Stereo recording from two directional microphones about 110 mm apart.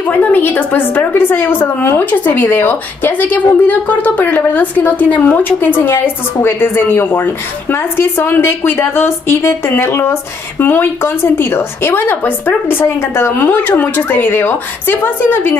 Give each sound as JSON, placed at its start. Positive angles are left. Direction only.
{"t": 0.0, "sound": "a woman's voice", "side_deg": 15}